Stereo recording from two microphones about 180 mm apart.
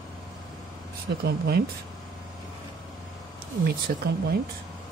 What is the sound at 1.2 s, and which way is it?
Speech, 65° right (ahead or behind).